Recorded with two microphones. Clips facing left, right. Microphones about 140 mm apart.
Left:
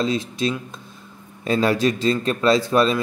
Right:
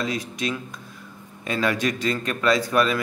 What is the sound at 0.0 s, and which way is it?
A man's voice, 30° left (ahead or behind).